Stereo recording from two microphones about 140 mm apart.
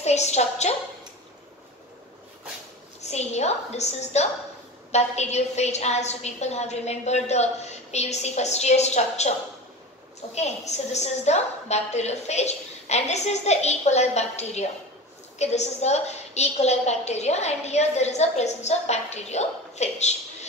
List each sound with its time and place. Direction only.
0.0 s a woman's voice: 55° left (ahead or behind)
3.0 s a woman's voice: 50° left (ahead or behind)
10.3 s a woman's voice: 50° left (ahead or behind)